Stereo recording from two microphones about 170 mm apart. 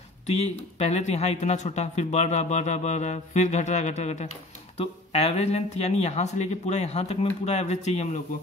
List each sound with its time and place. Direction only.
0.7 s a man's voice: 40° left (ahead or behind)